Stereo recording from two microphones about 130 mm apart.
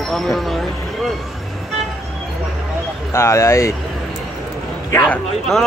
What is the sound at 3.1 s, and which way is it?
Speech, 20° left (ahead or behind).